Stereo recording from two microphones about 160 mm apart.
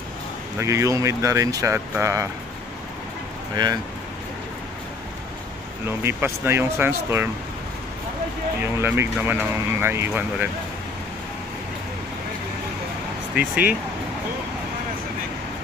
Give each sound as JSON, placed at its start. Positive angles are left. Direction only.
{"t": 0.6, "sound": "speech", "side_deg": -20}
{"t": 3.5, "sound": "speech", "side_deg": -25}
{"t": 6.0, "sound": "speech", "side_deg": -15}
{"t": 8.8, "sound": "speech", "side_deg": -15}
{"t": 13.3, "sound": "speech", "side_deg": -10}